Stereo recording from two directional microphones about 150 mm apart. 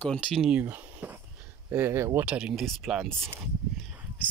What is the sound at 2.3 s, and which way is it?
Speech, 5° right (ahead or behind).